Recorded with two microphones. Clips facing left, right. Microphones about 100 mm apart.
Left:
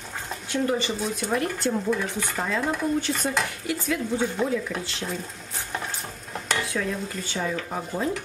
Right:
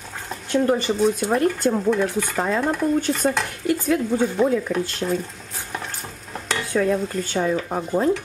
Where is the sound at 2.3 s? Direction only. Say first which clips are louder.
Right 3 dB; 45° right (ahead or behind).